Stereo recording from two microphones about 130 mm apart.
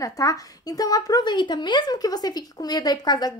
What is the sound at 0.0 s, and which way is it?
A woman's voice, 25° left (ahead or behind).